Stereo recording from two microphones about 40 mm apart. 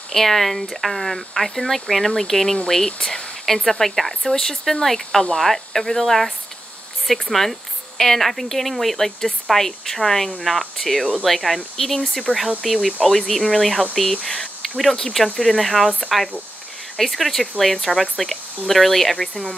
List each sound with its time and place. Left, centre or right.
0.1 s speech: centre
14.2 s a sound: centre
14.8 s speech: centre
19.1 s speech: left